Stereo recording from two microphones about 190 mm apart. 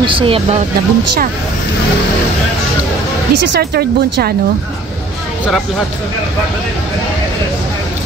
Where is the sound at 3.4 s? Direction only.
60° right (ahead or behind).